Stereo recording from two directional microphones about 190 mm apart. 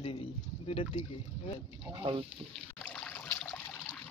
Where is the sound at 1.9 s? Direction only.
25° right (ahead or behind).